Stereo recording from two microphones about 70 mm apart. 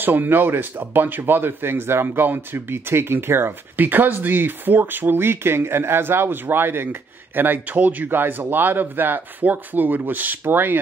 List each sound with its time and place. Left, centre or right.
0.0 s speech: right